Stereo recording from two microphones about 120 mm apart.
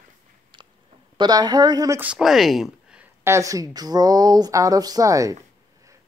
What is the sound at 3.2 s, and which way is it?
Speech, 25° right (ahead or behind).